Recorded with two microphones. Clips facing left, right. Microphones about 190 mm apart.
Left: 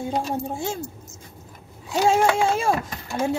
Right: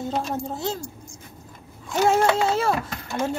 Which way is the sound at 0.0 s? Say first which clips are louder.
Left 1 dB; 10° left (ahead or behind).